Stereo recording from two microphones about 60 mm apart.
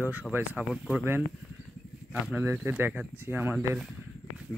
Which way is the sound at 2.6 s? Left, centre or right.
Right.